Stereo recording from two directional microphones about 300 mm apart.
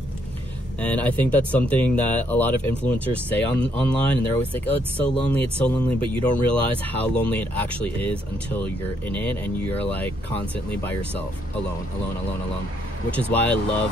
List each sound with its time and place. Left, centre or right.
0.7 s speech: centre
13.1 s speech: centre